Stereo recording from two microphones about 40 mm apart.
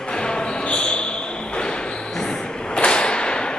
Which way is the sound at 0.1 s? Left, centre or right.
Left.